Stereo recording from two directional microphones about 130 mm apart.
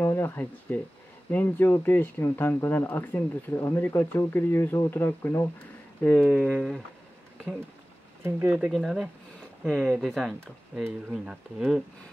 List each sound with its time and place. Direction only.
0.0 s speech: 20° left (ahead or behind)
6.0 s speech: 5° left (ahead or behind)
8.2 s speech: 15° right (ahead or behind)
8.7 s speech: centre (ahead or behind)